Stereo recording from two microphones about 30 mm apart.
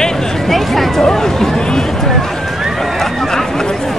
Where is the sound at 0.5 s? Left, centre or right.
Centre.